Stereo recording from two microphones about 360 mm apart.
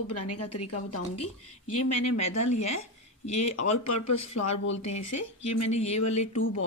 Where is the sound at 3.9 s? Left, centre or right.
Left.